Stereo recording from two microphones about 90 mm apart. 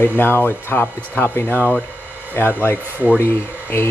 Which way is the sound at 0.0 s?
25° left (ahead or behind).